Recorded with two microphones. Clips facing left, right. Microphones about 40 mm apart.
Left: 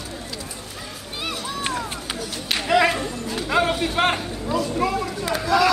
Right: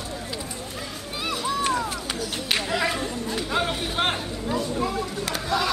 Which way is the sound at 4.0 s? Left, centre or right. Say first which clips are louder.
Left 4 dB; left.